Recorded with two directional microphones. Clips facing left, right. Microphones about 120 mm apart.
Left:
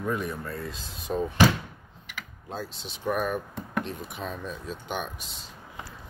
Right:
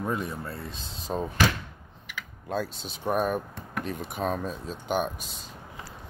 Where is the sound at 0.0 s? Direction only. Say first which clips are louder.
Left 1 dB; 25° right (ahead or behind).